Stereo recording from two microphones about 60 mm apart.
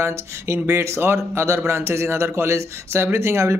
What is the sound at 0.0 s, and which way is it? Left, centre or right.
A man's voice, right.